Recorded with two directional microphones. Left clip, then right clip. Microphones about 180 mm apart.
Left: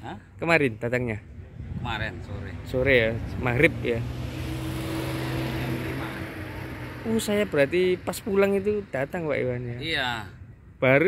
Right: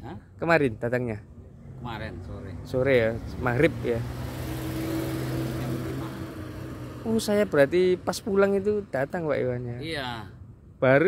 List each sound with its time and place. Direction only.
0.0 s speech: 5° right (ahead or behind)
4.6 s vehicle: 60° right (ahead or behind); by 7.2 s 40° right (ahead or behind)
7.2 s speech: 10° right (ahead or behind)
8.3 s speech: centre (ahead or behind)